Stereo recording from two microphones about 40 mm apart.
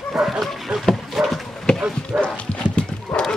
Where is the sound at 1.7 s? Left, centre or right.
Left.